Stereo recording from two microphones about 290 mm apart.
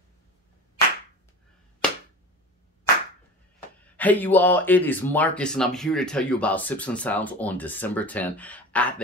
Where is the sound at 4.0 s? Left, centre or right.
Centre.